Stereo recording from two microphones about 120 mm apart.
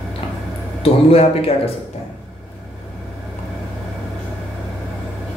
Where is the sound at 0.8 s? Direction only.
55° left (ahead or behind).